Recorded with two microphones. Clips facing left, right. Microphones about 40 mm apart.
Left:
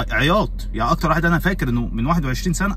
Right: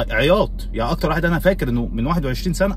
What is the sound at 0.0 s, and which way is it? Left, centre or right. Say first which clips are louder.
Speech: right 2 dB; right.